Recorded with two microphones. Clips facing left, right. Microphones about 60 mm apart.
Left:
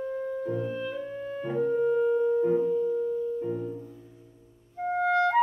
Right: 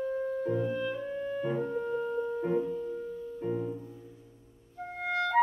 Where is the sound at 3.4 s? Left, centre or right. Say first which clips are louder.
Left 2 dB; right.